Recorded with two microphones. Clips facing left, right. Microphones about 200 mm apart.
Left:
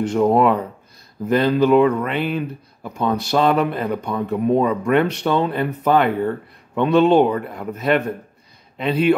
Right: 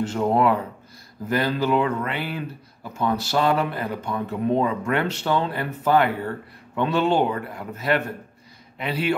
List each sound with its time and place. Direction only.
0.0 s a man's voice: 15° left (ahead or behind)